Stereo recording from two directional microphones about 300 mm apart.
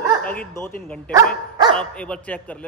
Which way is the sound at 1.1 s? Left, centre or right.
Centre.